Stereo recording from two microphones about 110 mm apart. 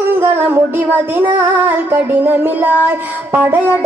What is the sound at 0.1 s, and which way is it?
Child singing, 20° right (ahead or behind).